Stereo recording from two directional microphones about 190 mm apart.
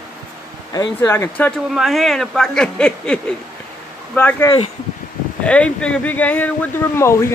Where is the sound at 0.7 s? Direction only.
15° left (ahead or behind).